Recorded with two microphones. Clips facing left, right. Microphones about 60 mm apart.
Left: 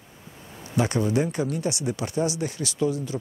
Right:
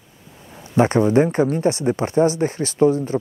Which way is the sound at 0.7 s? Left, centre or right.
Right.